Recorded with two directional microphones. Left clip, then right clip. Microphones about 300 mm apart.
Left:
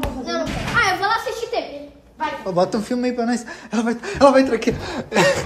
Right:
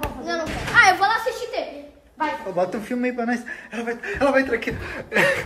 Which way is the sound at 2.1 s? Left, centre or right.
Centre.